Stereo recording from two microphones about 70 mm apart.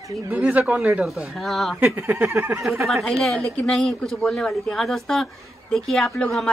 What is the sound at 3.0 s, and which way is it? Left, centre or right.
A woman's voice, centre.